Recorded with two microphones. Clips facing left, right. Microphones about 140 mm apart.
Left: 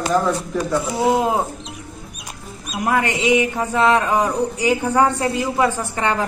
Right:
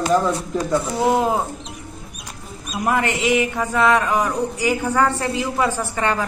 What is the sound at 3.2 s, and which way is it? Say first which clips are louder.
Speech: left 2 dB; 20° left (ahead or behind).